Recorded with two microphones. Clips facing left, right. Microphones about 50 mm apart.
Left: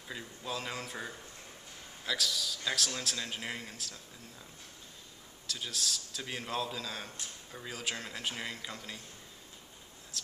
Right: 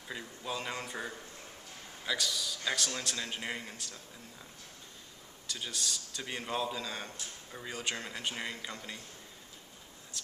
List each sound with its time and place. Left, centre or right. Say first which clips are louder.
0.1 s speech: right 1 dB; centre
5.5 s speech: left 1 dB; centre
10.1 s a sound: left 2 dB; centre